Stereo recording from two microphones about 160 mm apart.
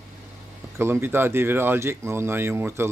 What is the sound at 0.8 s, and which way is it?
Speech, 15° right (ahead or behind).